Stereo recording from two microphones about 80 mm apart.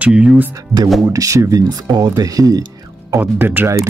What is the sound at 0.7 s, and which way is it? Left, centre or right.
Speech, centre.